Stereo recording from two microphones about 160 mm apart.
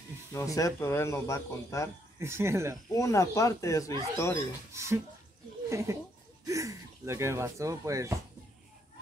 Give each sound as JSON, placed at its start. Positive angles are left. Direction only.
{"t": 0.3, "sound": "speech", "side_deg": 20}
{"t": 2.1, "sound": "speech", "side_deg": -15}
{"t": 2.9, "sound": "speech", "side_deg": 20}
{"t": 4.7, "sound": "speech", "side_deg": -15}